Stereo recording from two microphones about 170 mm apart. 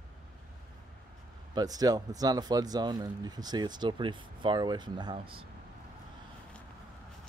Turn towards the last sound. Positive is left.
turn(degrees=-30)  # may be behind; listen again after turning